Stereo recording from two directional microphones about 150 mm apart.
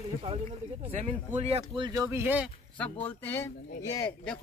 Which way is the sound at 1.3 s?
40° right (ahead or behind).